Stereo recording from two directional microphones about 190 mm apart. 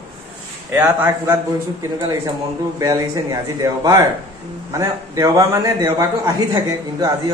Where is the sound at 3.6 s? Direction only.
20° right (ahead or behind).